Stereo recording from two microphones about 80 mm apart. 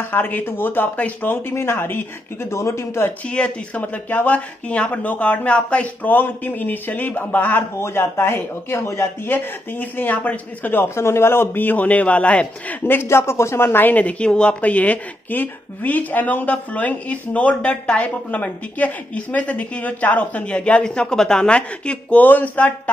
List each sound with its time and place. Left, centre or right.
0.1 s speech: left
3.3 s speech: centre